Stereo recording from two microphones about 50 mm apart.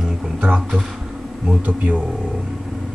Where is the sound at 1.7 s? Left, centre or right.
Right.